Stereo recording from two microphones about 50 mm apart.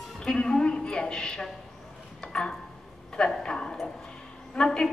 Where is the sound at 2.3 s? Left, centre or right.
Centre.